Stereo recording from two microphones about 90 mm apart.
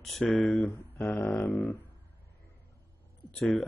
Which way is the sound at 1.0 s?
20° left (ahead or behind).